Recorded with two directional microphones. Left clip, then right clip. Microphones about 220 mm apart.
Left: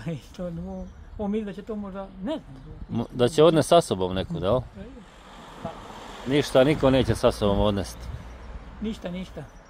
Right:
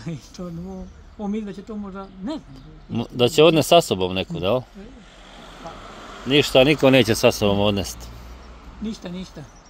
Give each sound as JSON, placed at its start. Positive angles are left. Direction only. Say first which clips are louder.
{"t": 0.0, "sound": "speech", "louder": "left 1 dB", "side_deg": 5}
{"t": 5.9, "sound": "a sound", "louder": "right 6 dB", "side_deg": 40}
{"t": 6.5, "sound": "speech", "louder": "right 4 dB", "side_deg": -5}